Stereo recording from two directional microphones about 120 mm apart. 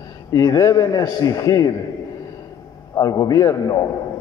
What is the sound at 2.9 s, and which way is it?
Speech, 30° left (ahead or behind).